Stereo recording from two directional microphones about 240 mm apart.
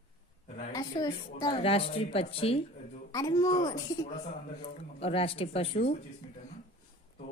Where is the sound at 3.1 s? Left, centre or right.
Centre.